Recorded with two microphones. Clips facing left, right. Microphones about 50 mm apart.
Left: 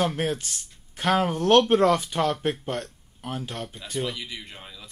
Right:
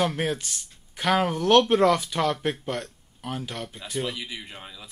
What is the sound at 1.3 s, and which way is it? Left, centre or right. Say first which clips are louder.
Speech: even; left.